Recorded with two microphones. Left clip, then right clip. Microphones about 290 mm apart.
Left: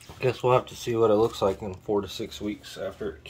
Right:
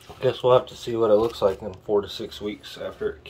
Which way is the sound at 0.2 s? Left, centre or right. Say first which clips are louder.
Right 4 dB; left.